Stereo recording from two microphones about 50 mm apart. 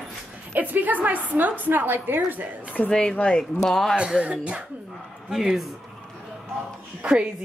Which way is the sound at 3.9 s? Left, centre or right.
Right.